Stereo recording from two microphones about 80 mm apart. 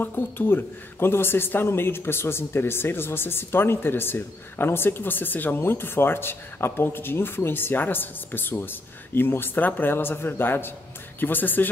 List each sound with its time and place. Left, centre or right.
0.0 s speech: left